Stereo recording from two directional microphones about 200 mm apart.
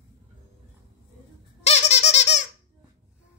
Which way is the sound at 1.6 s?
35° left (ahead or behind).